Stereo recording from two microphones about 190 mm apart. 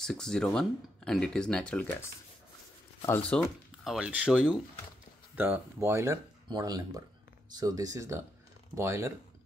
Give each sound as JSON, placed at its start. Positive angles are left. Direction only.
{"t": 0.0, "sound": "speech", "side_deg": 5}
{"t": 3.1, "sound": "speech", "side_deg": 5}